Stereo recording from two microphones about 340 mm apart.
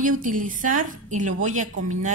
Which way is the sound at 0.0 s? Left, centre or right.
Right.